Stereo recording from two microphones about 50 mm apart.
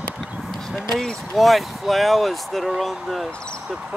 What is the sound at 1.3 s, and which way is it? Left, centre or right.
Speech, centre.